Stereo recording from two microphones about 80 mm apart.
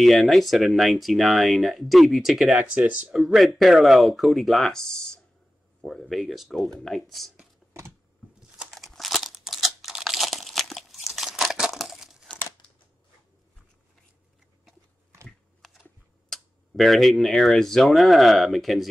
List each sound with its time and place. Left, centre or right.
0.0 s speech: centre
2.7 s speech: centre
3.1 s speech: centre
8.4 s crumpling: centre
15.2 s typing: centre
16.3 s speech: centre